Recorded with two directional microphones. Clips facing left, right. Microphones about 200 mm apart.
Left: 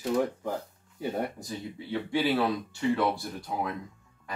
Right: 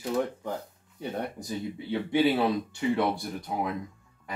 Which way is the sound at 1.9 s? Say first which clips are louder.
Right 3 dB; 20° right (ahead or behind).